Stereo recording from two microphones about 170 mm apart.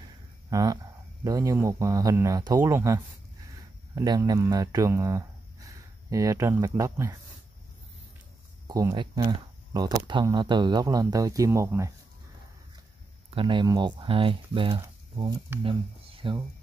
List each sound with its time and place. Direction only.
0.5 s speech: 20° right (ahead or behind)
8.6 s speech: 20° right (ahead or behind)
13.3 s speech: 30° right (ahead or behind)